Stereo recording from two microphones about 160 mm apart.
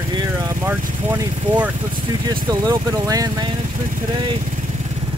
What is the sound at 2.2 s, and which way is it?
Speech, 25° right (ahead or behind).